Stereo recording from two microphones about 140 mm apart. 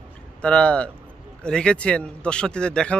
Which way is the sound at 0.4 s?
10° left (ahead or behind).